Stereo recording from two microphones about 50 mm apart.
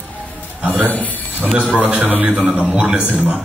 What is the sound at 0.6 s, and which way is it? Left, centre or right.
Speech, right.